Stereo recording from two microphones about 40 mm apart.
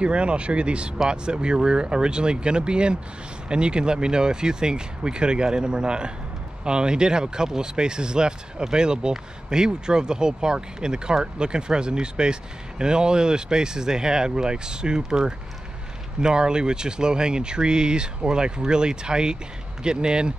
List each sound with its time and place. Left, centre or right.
0.0 s speech: right